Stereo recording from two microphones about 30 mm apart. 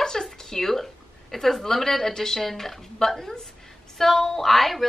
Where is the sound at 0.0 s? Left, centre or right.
Centre.